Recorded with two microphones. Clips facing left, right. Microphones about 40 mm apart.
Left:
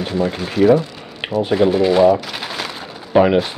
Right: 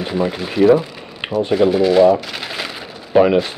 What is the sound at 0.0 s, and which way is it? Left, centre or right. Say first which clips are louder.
Speech: even; centre.